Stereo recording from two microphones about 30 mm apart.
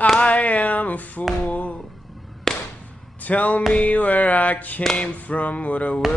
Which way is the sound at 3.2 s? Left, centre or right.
Left.